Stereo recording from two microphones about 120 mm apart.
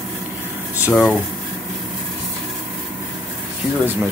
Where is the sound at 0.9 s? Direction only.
Centre (ahead or behind).